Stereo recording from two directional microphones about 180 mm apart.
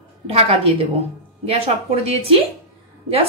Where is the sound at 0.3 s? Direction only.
35° right (ahead or behind).